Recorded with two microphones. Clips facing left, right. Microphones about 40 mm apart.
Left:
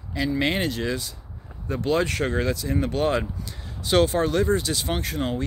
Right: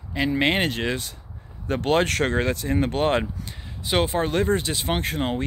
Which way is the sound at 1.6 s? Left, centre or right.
Right.